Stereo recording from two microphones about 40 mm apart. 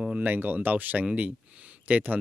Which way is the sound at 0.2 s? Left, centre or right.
Right.